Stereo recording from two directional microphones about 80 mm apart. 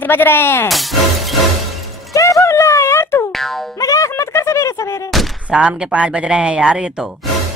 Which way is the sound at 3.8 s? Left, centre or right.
Left.